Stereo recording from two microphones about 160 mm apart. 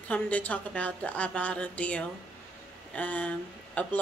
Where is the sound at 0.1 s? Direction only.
10° left (ahead or behind).